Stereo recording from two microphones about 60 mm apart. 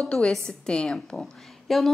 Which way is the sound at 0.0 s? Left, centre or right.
Centre.